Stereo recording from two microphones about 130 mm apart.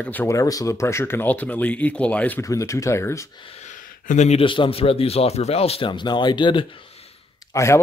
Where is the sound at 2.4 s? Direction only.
25° left (ahead or behind).